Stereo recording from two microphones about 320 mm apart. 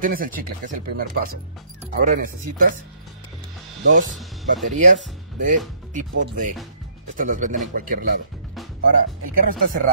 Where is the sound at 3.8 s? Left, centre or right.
Right.